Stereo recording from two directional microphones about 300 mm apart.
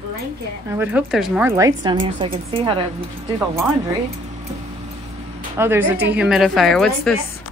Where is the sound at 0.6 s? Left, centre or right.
Centre.